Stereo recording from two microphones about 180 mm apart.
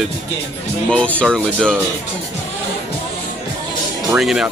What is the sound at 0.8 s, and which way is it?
Speech, 5° left (ahead or behind).